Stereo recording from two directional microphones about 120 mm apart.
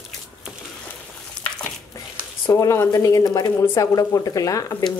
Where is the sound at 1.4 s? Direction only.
5° left (ahead or behind).